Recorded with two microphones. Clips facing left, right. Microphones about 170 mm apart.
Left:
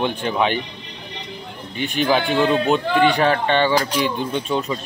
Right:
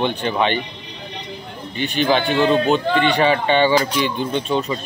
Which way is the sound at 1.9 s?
Centre (ahead or behind).